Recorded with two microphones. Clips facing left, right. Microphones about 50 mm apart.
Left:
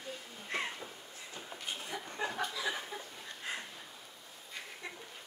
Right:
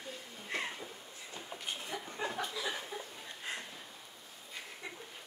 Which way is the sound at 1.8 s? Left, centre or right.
Centre.